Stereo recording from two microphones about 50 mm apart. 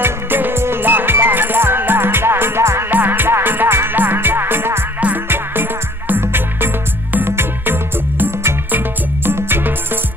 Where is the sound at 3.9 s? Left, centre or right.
Right.